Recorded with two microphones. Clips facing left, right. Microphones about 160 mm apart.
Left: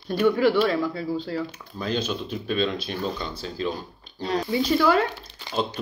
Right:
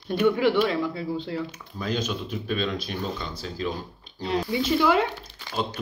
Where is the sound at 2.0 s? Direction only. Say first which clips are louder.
Left 1 dB; 30° left (ahead or behind).